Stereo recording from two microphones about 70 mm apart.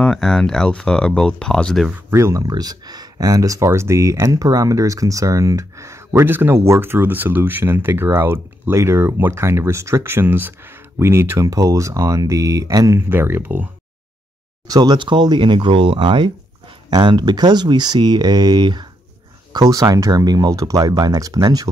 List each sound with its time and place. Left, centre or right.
0.0 s speech: centre
2.0 s speech: right
4.4 s speech: right
6.2 s speech: right
11.3 s speech: right
13.1 s speech: right
14.7 s speech: right
19.5 s speech: right
20.9 s speech: right